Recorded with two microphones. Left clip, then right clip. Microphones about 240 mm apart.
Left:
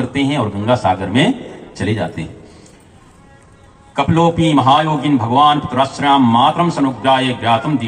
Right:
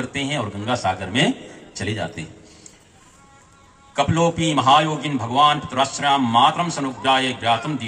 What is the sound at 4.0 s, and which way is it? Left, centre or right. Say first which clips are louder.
A man's voice: left 5 dB; right.